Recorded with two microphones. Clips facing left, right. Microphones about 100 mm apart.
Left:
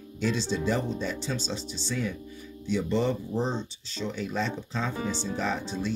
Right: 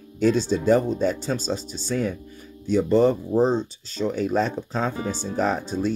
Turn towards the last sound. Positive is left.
turn(degrees=-45)  # may be behind; listen again after turning